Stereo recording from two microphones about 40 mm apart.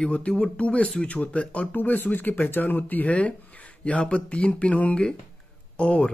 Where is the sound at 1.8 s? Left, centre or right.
Left.